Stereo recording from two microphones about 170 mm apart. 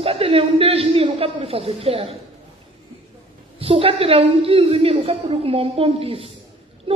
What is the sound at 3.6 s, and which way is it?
A man's voice, 35° right (ahead or behind).